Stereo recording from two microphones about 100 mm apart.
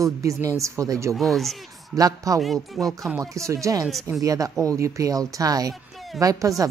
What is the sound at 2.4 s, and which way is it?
Speech, centre (ahead or behind).